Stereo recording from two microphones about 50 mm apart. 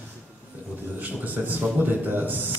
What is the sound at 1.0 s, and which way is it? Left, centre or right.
A man's voice, right.